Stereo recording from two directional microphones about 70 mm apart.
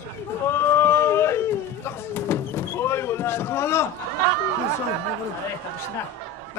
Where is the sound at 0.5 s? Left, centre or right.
Left.